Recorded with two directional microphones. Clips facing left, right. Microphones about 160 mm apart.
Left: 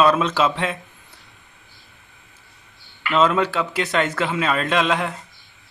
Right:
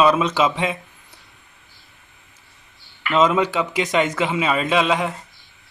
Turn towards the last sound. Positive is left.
turn(degrees=-5)  # may be behind; listen again after turning